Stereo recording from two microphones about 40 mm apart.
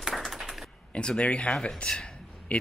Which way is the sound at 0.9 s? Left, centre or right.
Left.